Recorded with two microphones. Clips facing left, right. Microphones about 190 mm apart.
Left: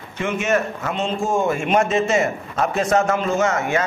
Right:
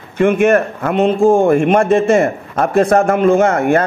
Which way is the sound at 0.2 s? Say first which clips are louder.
Right 9 dB; 55° right (ahead or behind).